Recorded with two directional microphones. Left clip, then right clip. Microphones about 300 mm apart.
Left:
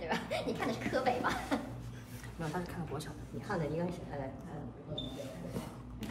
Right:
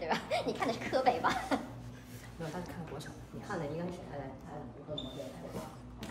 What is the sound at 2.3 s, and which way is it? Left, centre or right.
Speech, centre.